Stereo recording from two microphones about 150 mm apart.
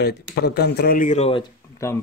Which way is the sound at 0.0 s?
90° left.